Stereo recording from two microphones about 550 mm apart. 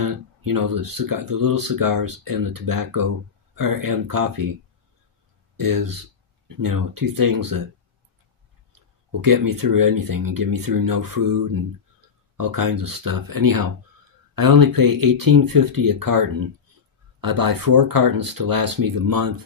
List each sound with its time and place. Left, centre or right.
0.0 s speech: right
5.6 s speech: right
8.7 s speech: right